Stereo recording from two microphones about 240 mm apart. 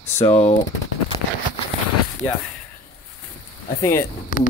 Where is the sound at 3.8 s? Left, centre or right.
Centre.